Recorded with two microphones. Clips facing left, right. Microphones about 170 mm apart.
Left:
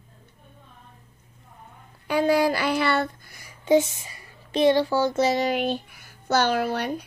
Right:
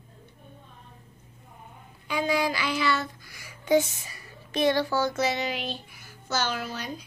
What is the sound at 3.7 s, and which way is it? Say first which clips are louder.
A child's voice: left 3 dB; 25° left (ahead or behind).